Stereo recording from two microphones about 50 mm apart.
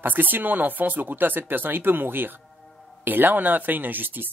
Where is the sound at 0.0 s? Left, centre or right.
Right.